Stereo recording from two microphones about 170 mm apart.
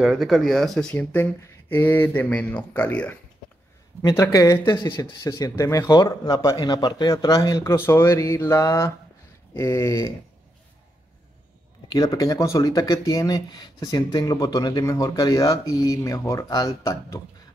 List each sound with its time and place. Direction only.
0.0 s speech: centre (ahead or behind); by 5.1 s 30° left (ahead or behind)
5.2 s speech: 20° left (ahead or behind)
11.9 s speech: 20° left (ahead or behind)